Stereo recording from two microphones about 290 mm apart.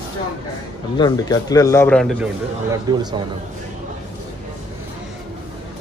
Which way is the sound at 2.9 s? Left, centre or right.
Centre.